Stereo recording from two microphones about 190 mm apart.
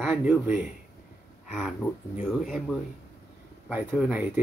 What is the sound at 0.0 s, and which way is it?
Speech, 5° right (ahead or behind).